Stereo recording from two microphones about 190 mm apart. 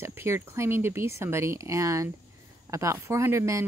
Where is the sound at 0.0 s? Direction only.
15° right (ahead or behind).